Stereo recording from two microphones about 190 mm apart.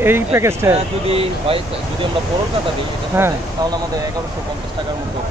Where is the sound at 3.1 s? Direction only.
15° right (ahead or behind).